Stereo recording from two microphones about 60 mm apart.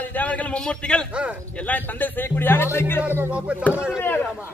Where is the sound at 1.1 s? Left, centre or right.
Centre.